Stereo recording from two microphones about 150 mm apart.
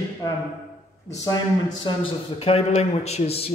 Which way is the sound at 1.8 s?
35° left (ahead or behind).